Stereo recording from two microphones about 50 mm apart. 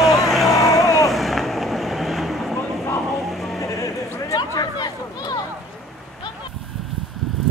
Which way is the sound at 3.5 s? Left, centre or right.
Left.